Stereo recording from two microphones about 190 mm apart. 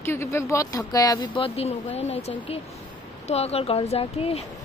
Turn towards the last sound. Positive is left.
turn(degrees=30)  # may be behind; listen again after turning